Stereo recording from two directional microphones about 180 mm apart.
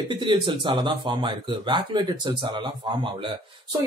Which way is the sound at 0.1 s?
25° right (ahead or behind).